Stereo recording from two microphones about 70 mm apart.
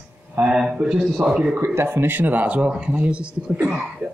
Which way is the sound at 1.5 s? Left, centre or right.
Right.